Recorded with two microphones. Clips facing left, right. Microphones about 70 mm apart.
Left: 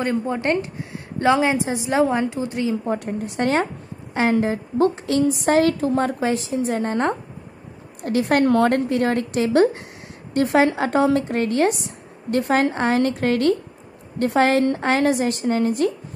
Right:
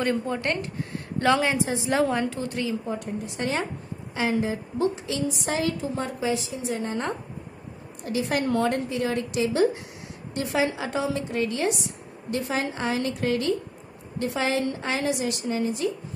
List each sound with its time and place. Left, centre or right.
0.0 s a woman's voice: left
2.9 s a woman's voice: left